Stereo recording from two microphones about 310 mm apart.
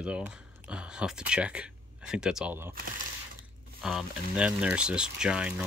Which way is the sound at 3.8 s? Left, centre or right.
Centre.